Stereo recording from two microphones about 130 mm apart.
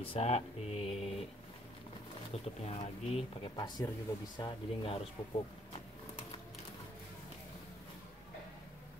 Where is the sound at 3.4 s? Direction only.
35° left (ahead or behind).